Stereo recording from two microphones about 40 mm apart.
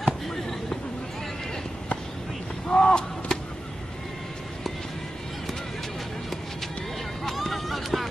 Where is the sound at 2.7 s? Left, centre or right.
Left.